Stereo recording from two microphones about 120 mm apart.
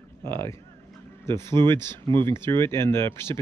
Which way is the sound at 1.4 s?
35° right (ahead or behind).